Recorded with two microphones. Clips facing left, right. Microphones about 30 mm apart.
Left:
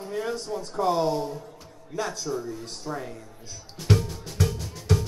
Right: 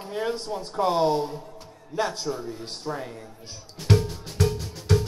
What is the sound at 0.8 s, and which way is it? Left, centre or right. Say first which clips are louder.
Speech: right 2 dB; right.